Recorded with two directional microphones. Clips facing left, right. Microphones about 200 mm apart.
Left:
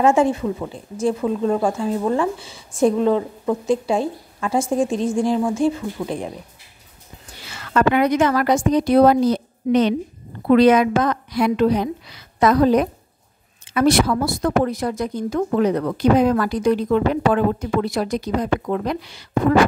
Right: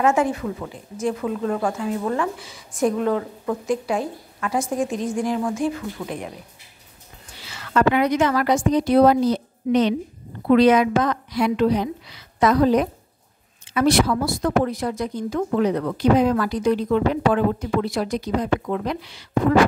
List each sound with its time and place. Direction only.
0.0 s speech: 30° left (ahead or behind)
7.4 s a woman's voice: 50° left (ahead or behind)